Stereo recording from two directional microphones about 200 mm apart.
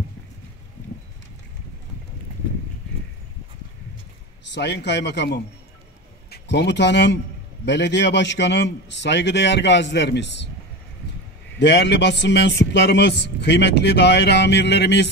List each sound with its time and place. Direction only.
4.5 s a man's voice: 60° left (ahead or behind)
11.6 s a man's voice: 60° left (ahead or behind)